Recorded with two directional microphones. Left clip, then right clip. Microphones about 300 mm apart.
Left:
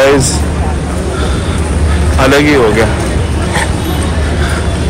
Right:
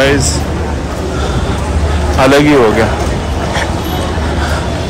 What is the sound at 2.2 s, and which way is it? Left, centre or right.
Speech, centre.